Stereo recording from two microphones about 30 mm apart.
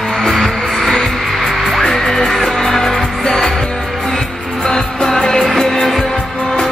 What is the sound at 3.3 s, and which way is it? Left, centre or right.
Music, centre.